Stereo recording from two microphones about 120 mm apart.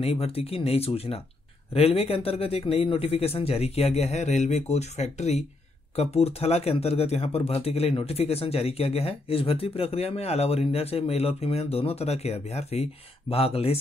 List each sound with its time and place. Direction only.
0.0 s speech: 55° left (ahead or behind)